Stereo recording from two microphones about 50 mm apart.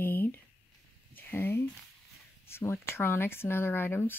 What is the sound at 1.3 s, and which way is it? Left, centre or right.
Speech, left.